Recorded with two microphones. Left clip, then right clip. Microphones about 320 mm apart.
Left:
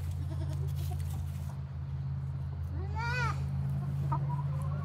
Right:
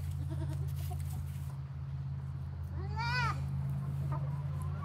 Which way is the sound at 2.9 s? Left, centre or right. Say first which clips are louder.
Even; centre.